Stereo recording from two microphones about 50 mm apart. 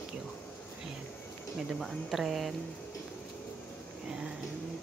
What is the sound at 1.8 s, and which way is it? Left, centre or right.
Speech, centre.